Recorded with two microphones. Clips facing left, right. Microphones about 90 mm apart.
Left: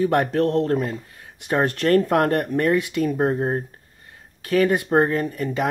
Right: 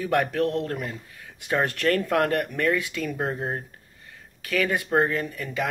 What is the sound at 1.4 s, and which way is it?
Speech, 25° left (ahead or behind).